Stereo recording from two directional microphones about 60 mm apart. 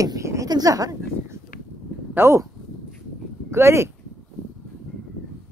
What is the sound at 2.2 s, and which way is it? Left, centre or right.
Speech, right.